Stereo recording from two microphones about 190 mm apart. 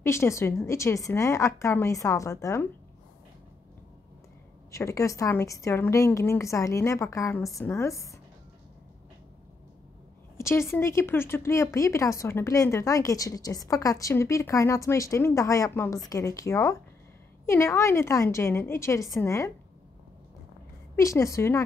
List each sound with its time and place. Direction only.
0.0 s speech: 15° left (ahead or behind)
4.6 s speech: 15° left (ahead or behind)
10.3 s speech: 15° left (ahead or behind)
20.9 s speech: 15° left (ahead or behind)